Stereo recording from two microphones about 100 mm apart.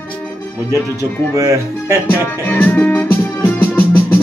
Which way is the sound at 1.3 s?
30° right (ahead or behind).